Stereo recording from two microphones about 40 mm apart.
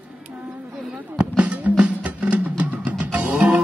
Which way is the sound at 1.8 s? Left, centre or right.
Right.